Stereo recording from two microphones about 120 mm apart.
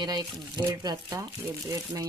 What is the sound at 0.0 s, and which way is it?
Speech, 35° right (ahead or behind).